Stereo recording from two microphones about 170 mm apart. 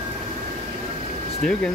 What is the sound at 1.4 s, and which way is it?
Speech, 5° left (ahead or behind).